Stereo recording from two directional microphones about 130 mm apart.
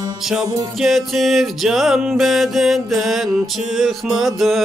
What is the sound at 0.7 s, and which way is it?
Music, centre (ahead or behind).